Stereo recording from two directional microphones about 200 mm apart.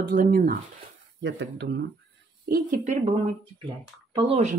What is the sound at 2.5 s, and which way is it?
Speech, 40° right (ahead or behind).